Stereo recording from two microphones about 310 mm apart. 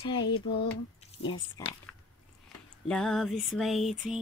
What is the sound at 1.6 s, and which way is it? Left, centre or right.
Speech, centre.